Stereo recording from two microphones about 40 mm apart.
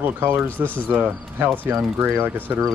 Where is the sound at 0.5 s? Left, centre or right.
Left.